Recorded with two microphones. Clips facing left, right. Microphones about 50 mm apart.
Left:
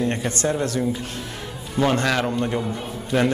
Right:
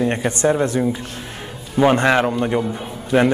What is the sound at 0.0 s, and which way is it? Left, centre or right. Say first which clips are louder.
A man's voice: right 5 dB; right.